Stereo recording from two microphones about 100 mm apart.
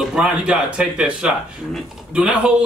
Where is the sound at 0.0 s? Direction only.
5° right (ahead or behind).